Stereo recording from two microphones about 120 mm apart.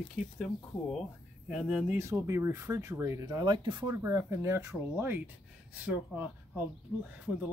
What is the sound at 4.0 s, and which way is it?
Speech, 25° right (ahead or behind).